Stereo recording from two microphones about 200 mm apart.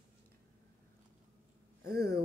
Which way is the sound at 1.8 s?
50° right (ahead or behind).